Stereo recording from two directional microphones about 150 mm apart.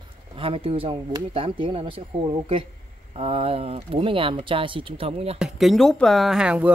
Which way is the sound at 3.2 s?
40° right (ahead or behind).